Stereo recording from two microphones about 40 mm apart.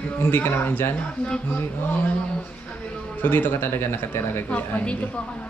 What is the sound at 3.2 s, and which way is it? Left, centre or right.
A man's voice, left.